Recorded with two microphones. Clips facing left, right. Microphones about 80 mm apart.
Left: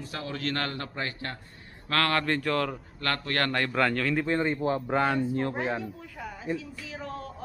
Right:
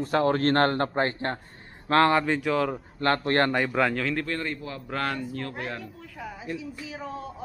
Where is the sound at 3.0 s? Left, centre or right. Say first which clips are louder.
Right 6 dB; right.